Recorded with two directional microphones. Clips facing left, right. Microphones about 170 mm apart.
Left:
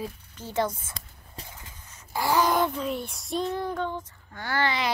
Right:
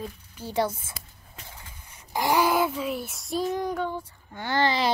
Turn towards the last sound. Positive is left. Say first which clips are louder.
# right 3 dB
turn(degrees=-30)  # may be behind; listen again after turning